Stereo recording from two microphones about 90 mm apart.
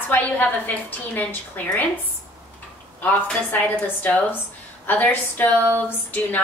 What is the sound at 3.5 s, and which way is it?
A woman's voice, 20° left (ahead or behind).